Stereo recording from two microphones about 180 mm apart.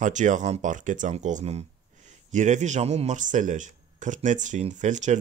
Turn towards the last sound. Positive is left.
turn(degrees=-40)  # may be behind; listen again after turning